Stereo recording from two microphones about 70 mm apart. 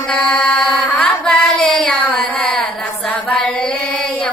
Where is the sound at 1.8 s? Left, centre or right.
Centre.